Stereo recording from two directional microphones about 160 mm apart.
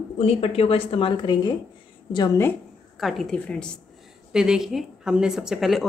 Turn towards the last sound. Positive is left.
turn(degrees=0)  # may be behind; listen again after turning